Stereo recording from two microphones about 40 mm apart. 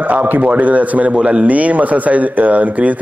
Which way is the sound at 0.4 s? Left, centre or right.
Right.